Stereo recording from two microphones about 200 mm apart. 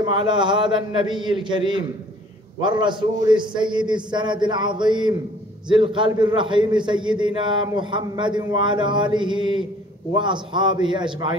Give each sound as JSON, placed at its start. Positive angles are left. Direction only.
{"t": 0.0, "sound": "a man's voice", "side_deg": -25}